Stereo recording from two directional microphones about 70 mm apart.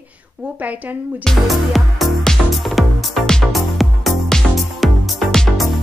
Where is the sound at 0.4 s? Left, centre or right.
Right.